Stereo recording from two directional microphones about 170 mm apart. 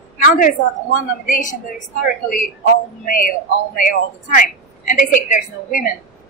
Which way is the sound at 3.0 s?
55° left (ahead or behind).